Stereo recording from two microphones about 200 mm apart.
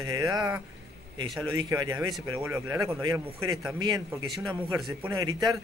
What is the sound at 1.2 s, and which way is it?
Speech, centre (ahead or behind).